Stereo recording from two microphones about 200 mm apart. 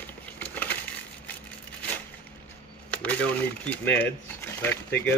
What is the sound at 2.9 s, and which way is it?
Speech, 5° left (ahead or behind).